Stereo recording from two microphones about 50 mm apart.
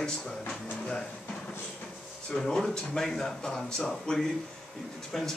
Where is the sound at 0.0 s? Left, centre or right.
Centre.